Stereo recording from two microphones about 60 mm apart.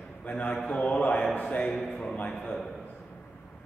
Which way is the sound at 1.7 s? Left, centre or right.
Centre.